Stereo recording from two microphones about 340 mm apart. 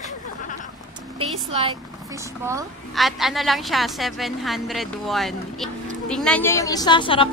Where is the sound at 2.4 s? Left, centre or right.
Centre.